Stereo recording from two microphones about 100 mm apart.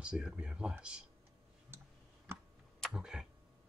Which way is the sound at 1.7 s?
25° right (ahead or behind).